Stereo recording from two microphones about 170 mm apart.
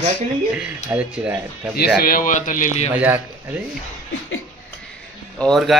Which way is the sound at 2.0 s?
55° left (ahead or behind).